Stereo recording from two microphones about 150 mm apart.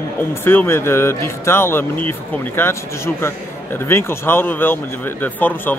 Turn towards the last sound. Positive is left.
turn(degrees=10)  # may be behind; listen again after turning